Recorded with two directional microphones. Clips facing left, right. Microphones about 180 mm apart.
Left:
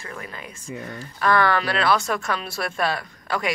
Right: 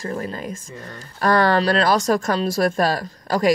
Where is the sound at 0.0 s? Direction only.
40° right (ahead or behind).